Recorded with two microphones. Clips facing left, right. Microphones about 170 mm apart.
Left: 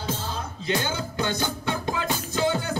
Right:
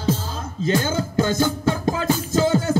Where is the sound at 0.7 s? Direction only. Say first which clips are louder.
Right 6 dB; 40° right (ahead or behind).